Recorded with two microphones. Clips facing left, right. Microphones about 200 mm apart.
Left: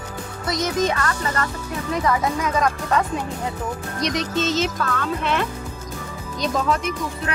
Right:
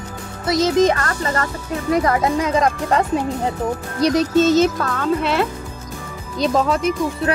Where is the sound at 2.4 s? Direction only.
30° right (ahead or behind).